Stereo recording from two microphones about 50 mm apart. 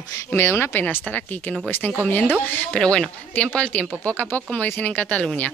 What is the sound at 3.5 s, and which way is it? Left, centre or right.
Speech, left.